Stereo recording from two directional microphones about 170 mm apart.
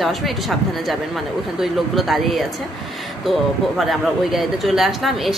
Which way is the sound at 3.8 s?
Centre (ahead or behind).